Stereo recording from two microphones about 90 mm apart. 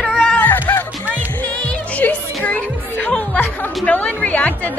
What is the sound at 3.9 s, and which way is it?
Speech, 15° left (ahead or behind).